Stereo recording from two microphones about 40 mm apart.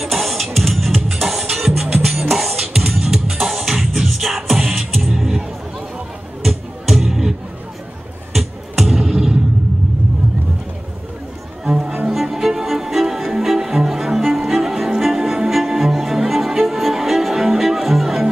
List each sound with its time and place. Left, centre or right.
0.0 s music: centre
2.6 s music: centre
6.4 s music: centre
8.8 s music: centre
11.6 s music: right
12.1 s music: centre